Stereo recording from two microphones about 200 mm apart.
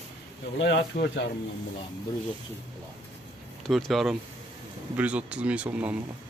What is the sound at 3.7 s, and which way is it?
Speech, centre (ahead or behind).